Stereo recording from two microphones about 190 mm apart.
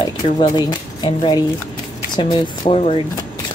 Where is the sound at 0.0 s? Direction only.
20° left (ahead or behind).